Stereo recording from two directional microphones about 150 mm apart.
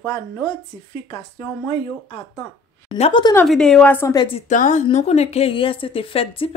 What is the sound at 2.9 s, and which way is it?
Speech, 45° left (ahead or behind).